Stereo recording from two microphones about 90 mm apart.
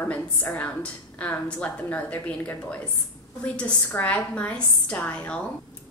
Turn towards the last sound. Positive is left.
turn(degrees=15)  # may be behind; listen again after turning